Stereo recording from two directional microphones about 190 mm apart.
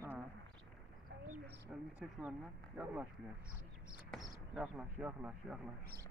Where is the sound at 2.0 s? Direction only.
5° right (ahead or behind).